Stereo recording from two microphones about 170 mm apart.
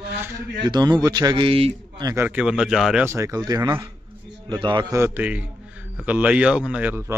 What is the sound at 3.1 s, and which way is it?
A man's voice, 20° right (ahead or behind).